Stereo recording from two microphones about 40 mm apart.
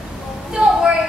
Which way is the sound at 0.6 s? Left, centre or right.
Right.